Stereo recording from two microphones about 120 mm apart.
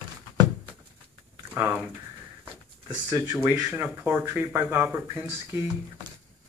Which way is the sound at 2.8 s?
30° right (ahead or behind).